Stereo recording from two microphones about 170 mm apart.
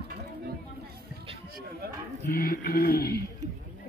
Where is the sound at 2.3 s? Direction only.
60° left (ahead or behind).